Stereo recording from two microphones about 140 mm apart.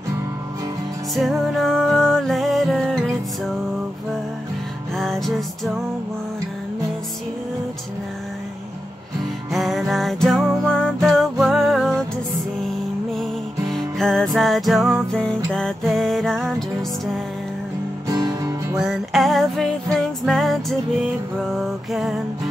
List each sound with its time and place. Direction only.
1.1 s music: centre (ahead or behind)
4.9 s music: centre (ahead or behind)
9.5 s music: centre (ahead or behind)
13.1 s music: centre (ahead or behind)
18.0 s music: 25° right (ahead or behind)
18.8 s music: centre (ahead or behind)
21.5 s music: centre (ahead or behind)